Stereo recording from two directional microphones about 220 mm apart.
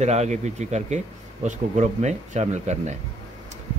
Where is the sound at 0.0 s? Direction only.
30° right (ahead or behind).